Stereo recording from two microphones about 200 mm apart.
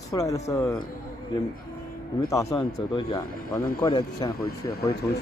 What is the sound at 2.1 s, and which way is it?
Speech, 15° left (ahead or behind).